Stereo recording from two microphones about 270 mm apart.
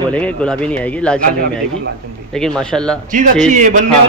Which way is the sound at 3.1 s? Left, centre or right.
Right.